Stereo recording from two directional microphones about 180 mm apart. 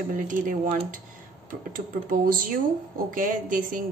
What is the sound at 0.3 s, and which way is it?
Speech, 50° right (ahead or behind).